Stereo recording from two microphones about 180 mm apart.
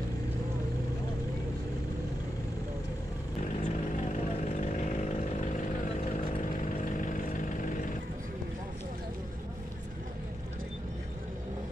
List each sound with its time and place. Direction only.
3.6 s chainsaw: 40° left (ahead or behind)
6.5 s vehicle: 45° left (ahead or behind)